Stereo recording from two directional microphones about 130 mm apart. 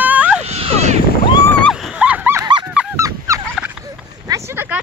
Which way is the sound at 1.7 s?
5° right (ahead or behind).